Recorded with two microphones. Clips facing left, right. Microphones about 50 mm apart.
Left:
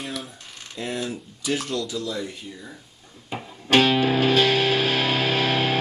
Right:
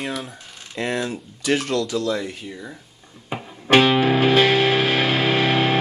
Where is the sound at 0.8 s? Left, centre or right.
Right.